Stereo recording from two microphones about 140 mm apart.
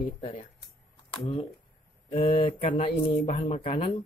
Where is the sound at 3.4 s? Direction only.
50° left (ahead or behind).